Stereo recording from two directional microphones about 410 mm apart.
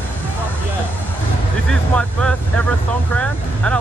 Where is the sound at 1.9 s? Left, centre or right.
Centre.